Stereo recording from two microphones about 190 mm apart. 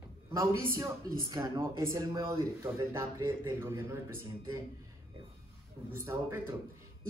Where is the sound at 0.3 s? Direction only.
15° right (ahead or behind).